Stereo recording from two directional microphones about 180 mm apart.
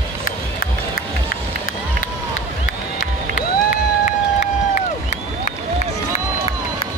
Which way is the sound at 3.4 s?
50° left (ahead or behind).